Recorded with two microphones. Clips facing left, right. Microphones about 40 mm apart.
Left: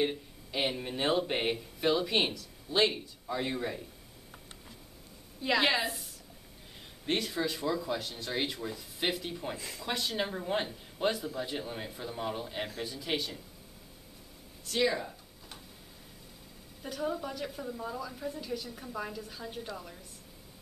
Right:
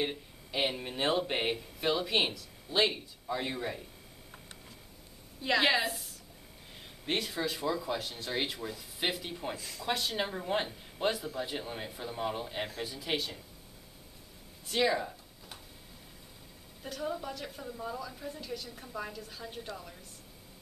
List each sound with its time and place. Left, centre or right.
0.0 s speech: centre
5.4 s speech: centre
9.6 s speech: centre
9.8 s speech: centre
14.7 s a sound: centre
16.8 s speech: centre